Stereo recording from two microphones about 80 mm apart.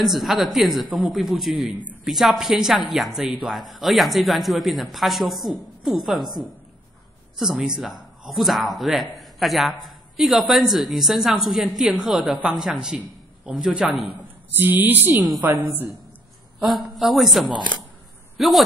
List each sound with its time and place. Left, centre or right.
0.0 s speech: centre
7.3 s speech: centre
14.6 s speech: right
16.5 s speech: centre